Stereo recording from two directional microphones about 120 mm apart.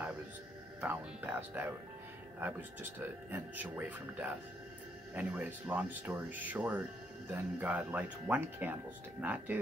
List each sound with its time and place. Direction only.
0.7 s speech: 15° right (ahead or behind)